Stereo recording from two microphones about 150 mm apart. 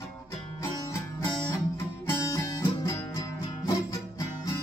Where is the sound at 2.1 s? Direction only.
20° left (ahead or behind).